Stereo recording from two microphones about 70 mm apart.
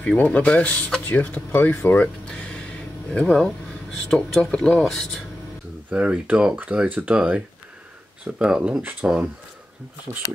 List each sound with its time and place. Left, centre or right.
0.0 s speech: centre
2.2 s a sound: centre
3.1 s speech: centre
5.9 s speech: centre